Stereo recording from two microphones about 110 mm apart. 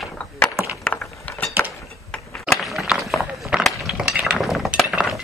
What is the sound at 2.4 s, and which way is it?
Chink, centre (ahead or behind).